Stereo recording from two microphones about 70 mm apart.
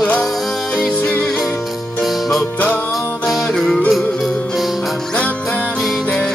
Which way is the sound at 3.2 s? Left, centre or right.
Centre.